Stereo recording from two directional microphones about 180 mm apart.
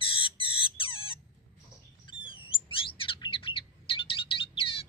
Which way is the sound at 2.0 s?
30° left (ahead or behind).